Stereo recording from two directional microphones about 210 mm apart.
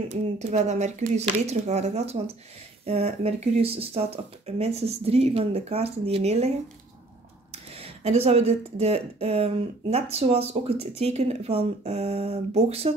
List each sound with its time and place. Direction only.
0.1 s speech: 35° right (ahead or behind)
7.5 s speech: 30° right (ahead or behind)